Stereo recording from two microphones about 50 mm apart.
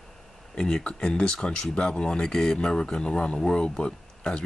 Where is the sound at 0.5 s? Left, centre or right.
Centre.